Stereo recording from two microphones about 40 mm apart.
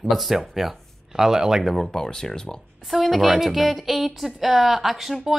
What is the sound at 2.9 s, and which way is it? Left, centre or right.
A woman's voice, centre.